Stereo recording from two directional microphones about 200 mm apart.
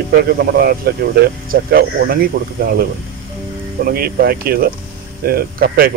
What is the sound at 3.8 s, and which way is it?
Speech, 50° right (ahead or behind).